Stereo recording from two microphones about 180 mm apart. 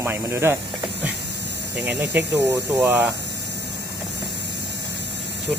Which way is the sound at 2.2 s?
70° right (ahead or behind).